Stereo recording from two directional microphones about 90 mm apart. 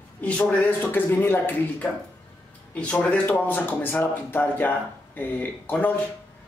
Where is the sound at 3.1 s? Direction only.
15° left (ahead or behind).